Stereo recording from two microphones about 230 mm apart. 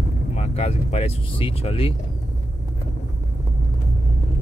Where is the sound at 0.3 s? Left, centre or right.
Left.